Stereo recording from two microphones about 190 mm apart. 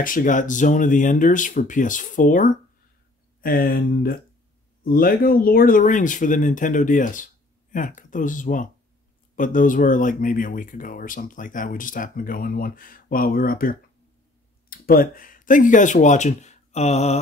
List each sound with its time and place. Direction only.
0.0 s speech: 45° left (ahead or behind)